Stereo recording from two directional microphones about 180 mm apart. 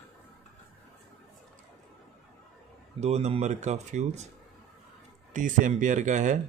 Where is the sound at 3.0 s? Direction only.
35° right (ahead or behind).